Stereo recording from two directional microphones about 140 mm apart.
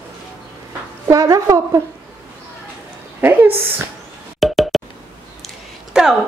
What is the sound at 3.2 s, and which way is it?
Speech, 15° right (ahead or behind).